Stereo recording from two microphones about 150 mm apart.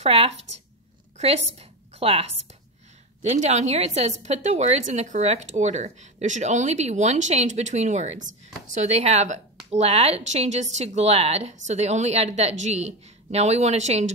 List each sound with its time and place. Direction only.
0.0 s a woman's voice: 45° right (ahead or behind)